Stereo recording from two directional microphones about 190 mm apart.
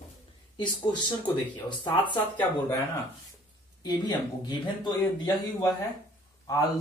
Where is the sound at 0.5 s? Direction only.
25° left (ahead or behind).